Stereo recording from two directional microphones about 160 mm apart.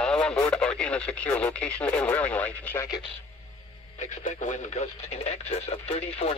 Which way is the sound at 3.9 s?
50° left (ahead or behind).